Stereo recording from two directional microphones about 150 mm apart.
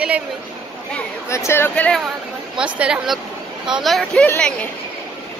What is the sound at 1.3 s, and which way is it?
Speech, 20° left (ahead or behind).